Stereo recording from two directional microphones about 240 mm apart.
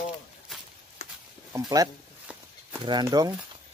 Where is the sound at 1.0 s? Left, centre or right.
Left.